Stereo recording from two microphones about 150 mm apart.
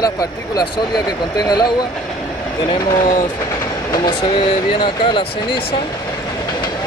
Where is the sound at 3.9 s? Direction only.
35° left (ahead or behind).